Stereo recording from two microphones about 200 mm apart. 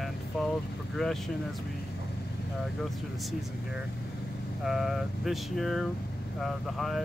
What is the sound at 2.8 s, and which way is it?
Speech, centre (ahead or behind).